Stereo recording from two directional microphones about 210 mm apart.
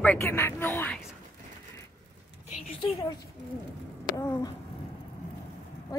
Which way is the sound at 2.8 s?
20° left (ahead or behind).